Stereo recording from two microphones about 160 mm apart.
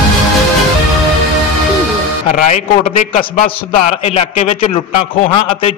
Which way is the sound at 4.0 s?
45° left (ahead or behind).